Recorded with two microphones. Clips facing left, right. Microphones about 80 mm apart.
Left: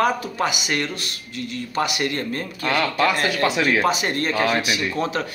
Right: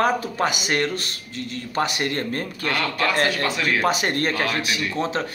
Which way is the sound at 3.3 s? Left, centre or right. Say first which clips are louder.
Left 3 dB; centre.